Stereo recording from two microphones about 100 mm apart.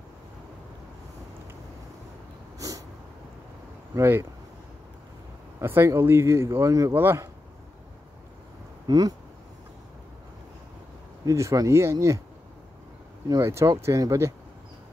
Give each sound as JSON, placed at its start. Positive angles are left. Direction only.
{"t": 3.9, "sound": "speech", "side_deg": -25}
{"t": 5.6, "sound": "speech", "side_deg": -25}
{"t": 7.0, "sound": "speech", "side_deg": -20}
{"t": 8.8, "sound": "speech", "side_deg": -40}
{"t": 11.2, "sound": "speech", "side_deg": -30}
{"t": 13.3, "sound": "speech", "side_deg": -30}